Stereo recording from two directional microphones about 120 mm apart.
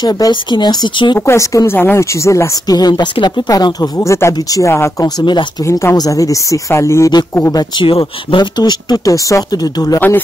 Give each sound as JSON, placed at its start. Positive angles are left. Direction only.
{"t": 0.0, "sound": "speech", "side_deg": 40}
{"t": 1.2, "sound": "speech", "side_deg": 25}
{"t": 5.2, "sound": "speech", "side_deg": 40}
{"t": 5.7, "sound": "speech", "side_deg": 25}
{"t": 7.7, "sound": "speech", "side_deg": 40}
{"t": 9.9, "sound": "a man's voice", "side_deg": 15}